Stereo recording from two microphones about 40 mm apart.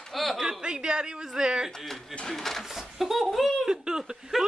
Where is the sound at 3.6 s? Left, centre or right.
Centre.